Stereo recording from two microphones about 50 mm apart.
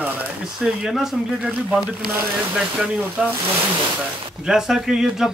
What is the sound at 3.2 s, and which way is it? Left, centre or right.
Speech, right.